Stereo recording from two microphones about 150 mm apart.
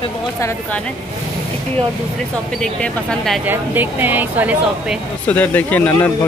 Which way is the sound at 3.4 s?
10° right (ahead or behind).